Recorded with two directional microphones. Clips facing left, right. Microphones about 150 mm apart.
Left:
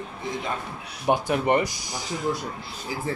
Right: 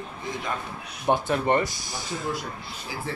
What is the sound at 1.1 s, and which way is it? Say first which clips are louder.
Speech: left 1 dB; 15° left (ahead or behind).